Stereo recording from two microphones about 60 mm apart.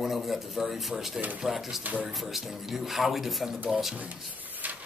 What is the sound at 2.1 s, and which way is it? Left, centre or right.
Speech, centre.